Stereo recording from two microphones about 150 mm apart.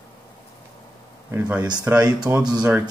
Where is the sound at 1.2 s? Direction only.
10° right (ahead or behind).